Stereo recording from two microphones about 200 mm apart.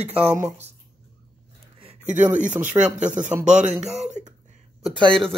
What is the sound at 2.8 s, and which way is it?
Speech, 20° right (ahead or behind).